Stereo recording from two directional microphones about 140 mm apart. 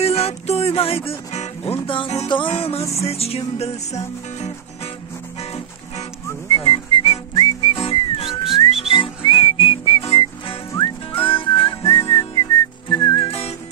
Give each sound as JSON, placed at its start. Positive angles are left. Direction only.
{"t": 0.0, "sound": "music", "side_deg": 45}
{"t": 6.5, "sound": "whistling", "side_deg": 40}
{"t": 13.2, "sound": "whistling", "side_deg": 45}